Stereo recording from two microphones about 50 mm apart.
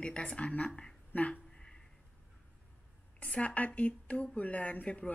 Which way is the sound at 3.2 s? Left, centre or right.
Left.